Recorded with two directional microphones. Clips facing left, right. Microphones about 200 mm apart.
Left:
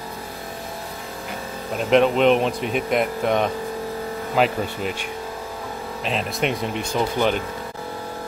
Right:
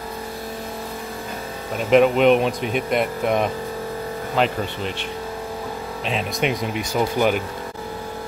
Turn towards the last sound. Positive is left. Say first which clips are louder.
# right 1 dB
turn(degrees=-10)  # may be behind; listen again after turning